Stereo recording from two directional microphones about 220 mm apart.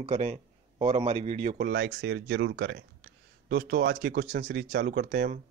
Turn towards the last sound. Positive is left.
turn(degrees=-45)  # may be behind; listen again after turning